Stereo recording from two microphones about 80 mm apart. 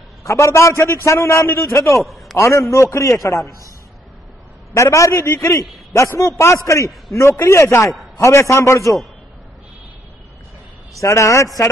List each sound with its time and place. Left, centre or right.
0.2 s a man's voice: left
2.0 s a man's voice: centre
2.3 s a man's voice: left
4.7 s a man's voice: left
11.0 s a man's voice: left